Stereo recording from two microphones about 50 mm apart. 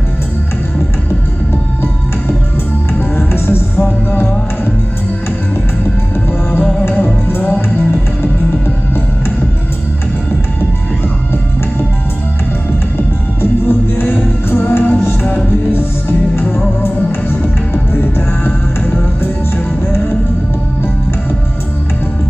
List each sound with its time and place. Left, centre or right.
2.9 s music: left
7.4 s music: left
13.4 s music: left
17.9 s music: left
18.8 s music: left